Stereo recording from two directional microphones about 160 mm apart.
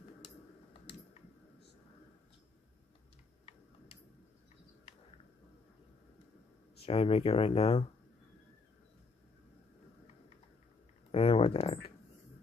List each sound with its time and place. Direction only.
6.8 s speech: 35° left (ahead or behind)
11.1 s speech: 35° left (ahead or behind)